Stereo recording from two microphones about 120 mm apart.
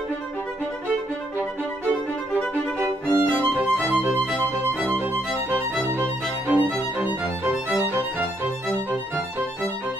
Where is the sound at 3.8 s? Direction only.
15° right (ahead or behind).